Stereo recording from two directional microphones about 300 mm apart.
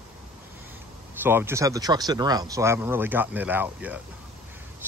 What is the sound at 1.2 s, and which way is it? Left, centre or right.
Speech, centre.